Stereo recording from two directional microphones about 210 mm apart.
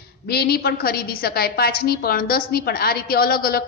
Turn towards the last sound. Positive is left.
turn(degrees=45)  # may be behind; listen again after turning